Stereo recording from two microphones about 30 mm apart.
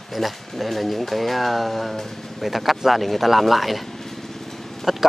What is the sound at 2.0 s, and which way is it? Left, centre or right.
Speech, centre.